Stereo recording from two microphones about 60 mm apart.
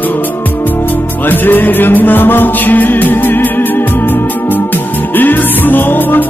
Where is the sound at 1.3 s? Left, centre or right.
Left.